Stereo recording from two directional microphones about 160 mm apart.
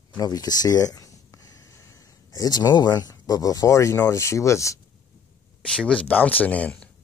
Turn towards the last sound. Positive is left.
turn(degrees=10)  # may be behind; listen again after turning